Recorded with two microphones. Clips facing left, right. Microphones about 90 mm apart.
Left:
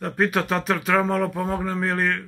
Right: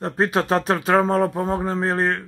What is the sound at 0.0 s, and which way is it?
Speech, 30° right (ahead or behind).